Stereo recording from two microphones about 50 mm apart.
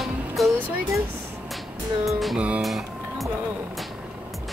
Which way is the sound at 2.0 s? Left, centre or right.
Centre.